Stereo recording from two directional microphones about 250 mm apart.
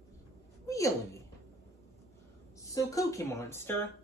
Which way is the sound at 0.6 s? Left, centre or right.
Centre.